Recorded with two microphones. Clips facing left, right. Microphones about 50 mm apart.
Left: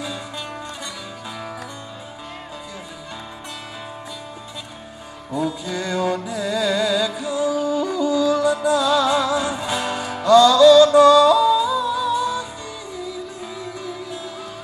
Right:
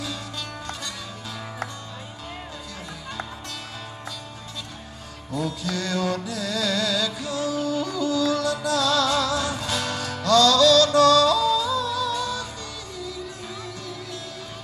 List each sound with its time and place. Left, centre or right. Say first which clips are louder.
5.3 s music: left 4 dB; centre